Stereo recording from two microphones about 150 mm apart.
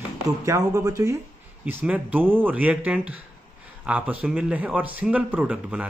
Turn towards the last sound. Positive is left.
turn(degrees=-10)  # may be behind; listen again after turning